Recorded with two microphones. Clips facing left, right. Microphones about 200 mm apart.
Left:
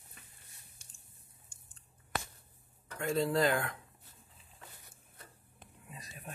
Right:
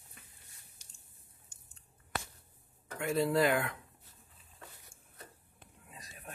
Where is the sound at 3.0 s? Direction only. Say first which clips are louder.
Right 1 dB; 5° right (ahead or behind).